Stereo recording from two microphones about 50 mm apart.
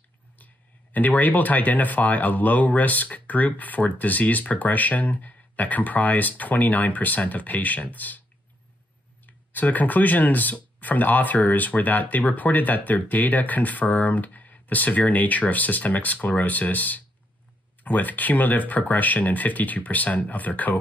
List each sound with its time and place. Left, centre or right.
0.9 s speech: left
9.2 s speech: left